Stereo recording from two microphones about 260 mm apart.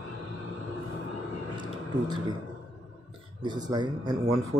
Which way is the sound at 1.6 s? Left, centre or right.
Centre.